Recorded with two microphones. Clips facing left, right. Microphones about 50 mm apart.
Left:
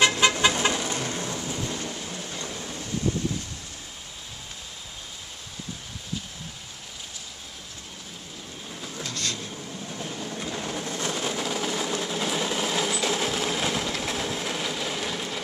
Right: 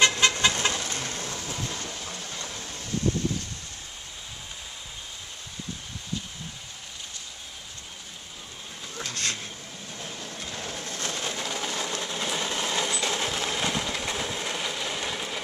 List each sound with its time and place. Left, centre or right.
0.0 s vehicle: centre
9.1 s vehicle: right
9.8 s vehicle: centre